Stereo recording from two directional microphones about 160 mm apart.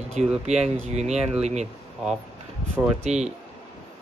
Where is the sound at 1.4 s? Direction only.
45° right (ahead or behind).